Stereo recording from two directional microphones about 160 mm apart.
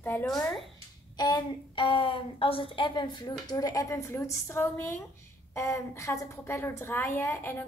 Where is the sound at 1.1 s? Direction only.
30° left (ahead or behind).